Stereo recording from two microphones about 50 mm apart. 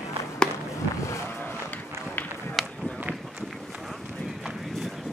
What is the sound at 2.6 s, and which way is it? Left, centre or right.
Run, centre.